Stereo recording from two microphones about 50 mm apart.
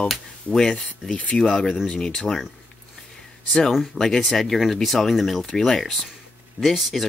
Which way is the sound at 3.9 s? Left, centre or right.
Centre.